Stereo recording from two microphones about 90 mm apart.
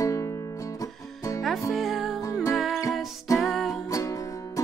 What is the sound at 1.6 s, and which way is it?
Music, centre (ahead or behind).